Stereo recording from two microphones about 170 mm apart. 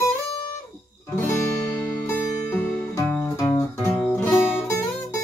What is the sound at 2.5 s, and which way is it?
Music, 10° left (ahead or behind).